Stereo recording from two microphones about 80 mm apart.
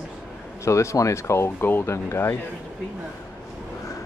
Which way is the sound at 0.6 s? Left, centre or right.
Left.